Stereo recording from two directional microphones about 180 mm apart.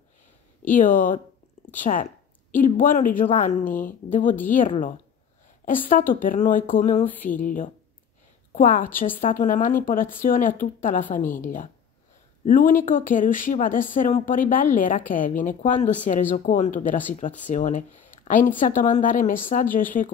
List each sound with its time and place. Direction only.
0.7 s speech: 50° left (ahead or behind)
12.4 s speech: 50° left (ahead or behind)